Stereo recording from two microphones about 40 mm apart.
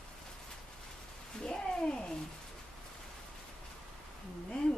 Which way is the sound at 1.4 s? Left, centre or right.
Centre.